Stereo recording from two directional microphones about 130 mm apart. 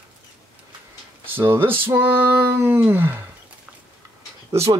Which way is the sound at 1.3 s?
15° right (ahead or behind).